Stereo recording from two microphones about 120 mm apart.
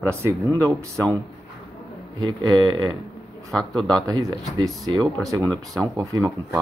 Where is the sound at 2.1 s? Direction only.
35° right (ahead or behind).